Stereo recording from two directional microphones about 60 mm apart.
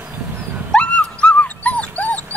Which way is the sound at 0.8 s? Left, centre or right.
Left.